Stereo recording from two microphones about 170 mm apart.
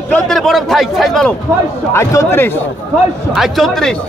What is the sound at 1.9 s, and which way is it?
Speech, 15° left (ahead or behind).